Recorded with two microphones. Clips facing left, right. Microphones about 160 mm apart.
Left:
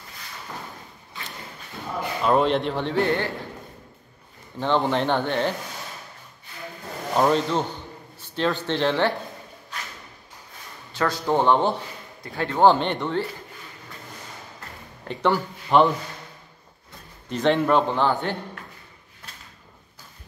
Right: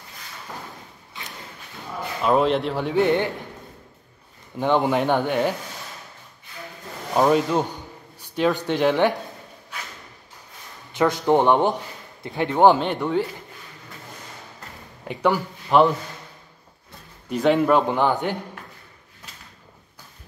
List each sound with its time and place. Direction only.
2.2 s speech: centre (ahead or behind); by 3.3 s 15° right (ahead or behind)
4.6 s a man's voice: 10° right (ahead or behind)
7.2 s a man's voice: 10° right (ahead or behind)
10.9 s a man's voice: 20° right (ahead or behind)
12.7 s a man's voice: 5° right (ahead or behind)
15.0 s speech: 10° right (ahead or behind)
17.3 s a man's voice: 10° right (ahead or behind)